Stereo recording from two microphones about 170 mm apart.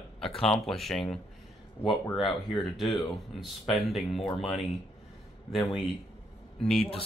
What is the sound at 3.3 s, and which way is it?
Speech, centre (ahead or behind).